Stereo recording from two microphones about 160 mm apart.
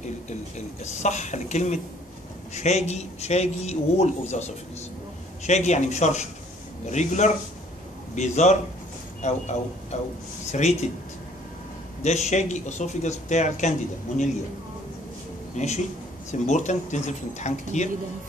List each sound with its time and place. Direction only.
0.0 s speech: 45° left (ahead or behind)
12.0 s speech: 45° left (ahead or behind)
15.5 s a man's voice: 45° left (ahead or behind)